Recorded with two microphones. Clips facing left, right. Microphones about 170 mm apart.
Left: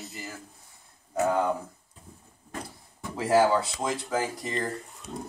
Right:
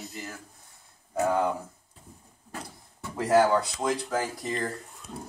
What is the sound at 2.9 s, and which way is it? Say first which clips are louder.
Speech: even; 5° left (ahead or behind).